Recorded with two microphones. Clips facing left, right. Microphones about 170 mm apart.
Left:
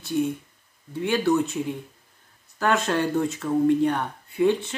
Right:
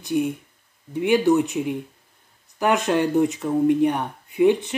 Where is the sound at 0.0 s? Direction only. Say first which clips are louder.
Right 2 dB; 15° right (ahead or behind).